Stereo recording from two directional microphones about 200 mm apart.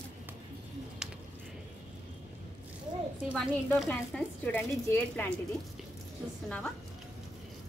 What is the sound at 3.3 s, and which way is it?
Speech, centre (ahead or behind).